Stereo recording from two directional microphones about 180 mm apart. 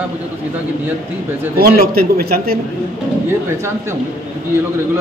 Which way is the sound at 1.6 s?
55° right (ahead or behind).